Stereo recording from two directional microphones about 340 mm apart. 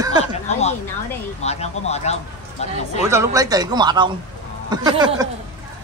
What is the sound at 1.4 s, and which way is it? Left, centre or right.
Speech, centre.